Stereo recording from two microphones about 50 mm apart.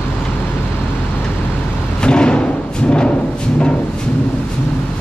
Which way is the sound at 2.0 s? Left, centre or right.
Centre.